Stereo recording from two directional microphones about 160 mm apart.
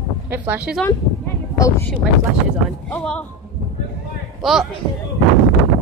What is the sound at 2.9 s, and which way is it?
Speech, 5° left (ahead or behind).